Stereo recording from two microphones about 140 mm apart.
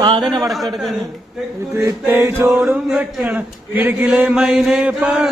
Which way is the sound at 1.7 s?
20° right (ahead or behind).